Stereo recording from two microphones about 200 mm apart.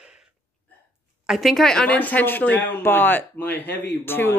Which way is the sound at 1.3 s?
Centre (ahead or behind).